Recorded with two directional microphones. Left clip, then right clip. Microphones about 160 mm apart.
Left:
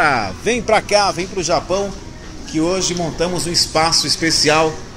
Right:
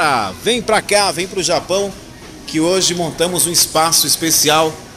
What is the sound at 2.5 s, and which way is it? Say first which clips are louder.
Speech: right 3 dB; 30° right (ahead or behind).